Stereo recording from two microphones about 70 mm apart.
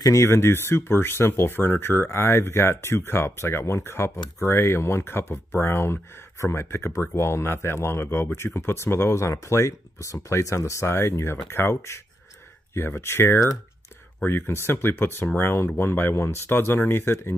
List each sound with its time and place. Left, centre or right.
0.2 s speech: left